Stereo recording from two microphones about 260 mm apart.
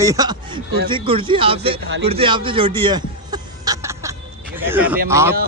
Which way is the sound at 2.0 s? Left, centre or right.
Right.